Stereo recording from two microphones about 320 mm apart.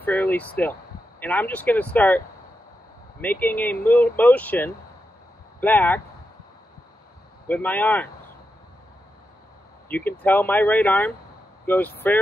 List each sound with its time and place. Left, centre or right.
0.0 s speech: centre
7.4 s speech: centre
9.8 s speech: centre